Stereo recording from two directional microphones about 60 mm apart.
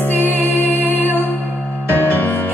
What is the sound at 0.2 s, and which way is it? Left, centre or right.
Music, right.